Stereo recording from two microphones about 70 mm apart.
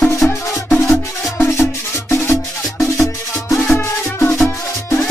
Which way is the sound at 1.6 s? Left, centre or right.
Left.